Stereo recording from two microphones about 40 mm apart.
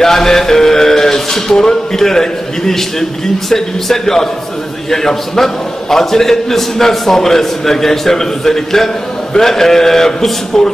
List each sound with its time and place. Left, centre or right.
0.0 s music: centre
4.9 s a man's voice: centre